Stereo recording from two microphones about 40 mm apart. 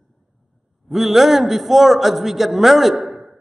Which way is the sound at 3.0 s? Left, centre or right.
Centre.